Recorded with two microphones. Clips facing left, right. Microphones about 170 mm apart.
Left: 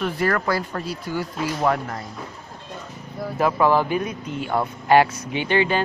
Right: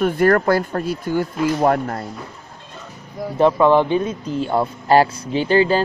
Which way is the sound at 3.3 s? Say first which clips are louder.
Right 5 dB; 25° right (ahead or behind).